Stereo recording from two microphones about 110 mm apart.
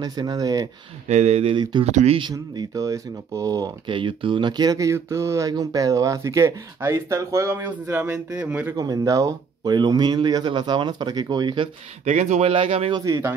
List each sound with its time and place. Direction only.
0.0 s speech: 35° right (ahead or behind)
1.0 s speech: 90° right
1.5 s speech: 45° right (ahead or behind)
1.9 s speech: 90° right
2.3 s speech: 30° right (ahead or behind); by 8.7 s 15° right (ahead or behind)
8.7 s speech: 30° right (ahead or behind)
12.0 s speech: 90° right; by 12.9 s 60° right (ahead or behind)
12.9 s speech: 35° right (ahead or behind)